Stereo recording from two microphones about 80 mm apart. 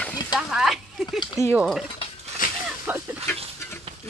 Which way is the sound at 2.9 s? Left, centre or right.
Right.